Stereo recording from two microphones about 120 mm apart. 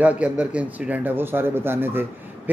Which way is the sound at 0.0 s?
10° right (ahead or behind).